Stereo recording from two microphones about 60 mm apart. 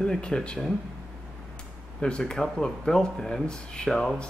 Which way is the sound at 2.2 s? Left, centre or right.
Centre.